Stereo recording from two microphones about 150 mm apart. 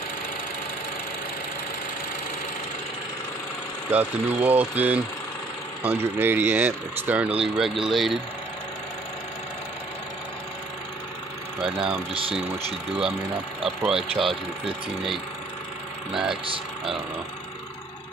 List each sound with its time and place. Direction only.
3.9 s speech: 10° right (ahead or behind)
11.6 s speech: 5° right (ahead or behind)
12.1 s speech: 35° right (ahead or behind)
13.8 s speech: centre (ahead or behind)
16.1 s speech: 5° right (ahead or behind)